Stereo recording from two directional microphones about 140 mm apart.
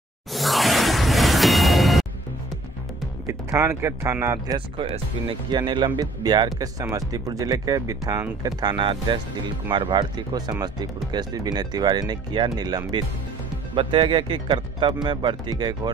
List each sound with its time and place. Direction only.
0.3 s music: centre (ahead or behind)
3.3 s speech: 20° right (ahead or behind)
4.6 s speech: 40° right (ahead or behind)